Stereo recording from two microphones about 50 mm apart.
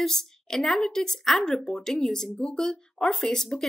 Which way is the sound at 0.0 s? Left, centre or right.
Centre.